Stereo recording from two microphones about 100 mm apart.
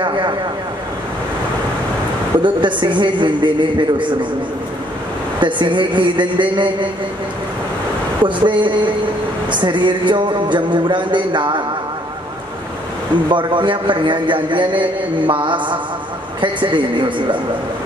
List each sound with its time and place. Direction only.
0.0 s a man's voice: 50° right (ahead or behind)
2.4 s a man's voice: 50° right (ahead or behind)
5.4 s a man's voice: 55° right (ahead or behind)
8.4 s a man's voice: 50° right (ahead or behind)
13.3 s a man's voice: 50° right (ahead or behind)